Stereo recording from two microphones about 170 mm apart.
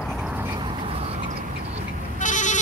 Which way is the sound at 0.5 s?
30° right (ahead or behind).